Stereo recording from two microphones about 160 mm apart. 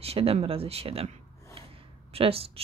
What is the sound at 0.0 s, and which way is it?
Speech, 40° right (ahead or behind).